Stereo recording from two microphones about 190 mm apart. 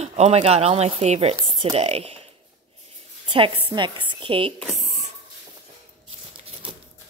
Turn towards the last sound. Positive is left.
turn(degrees=-25)  # may be behind; listen again after turning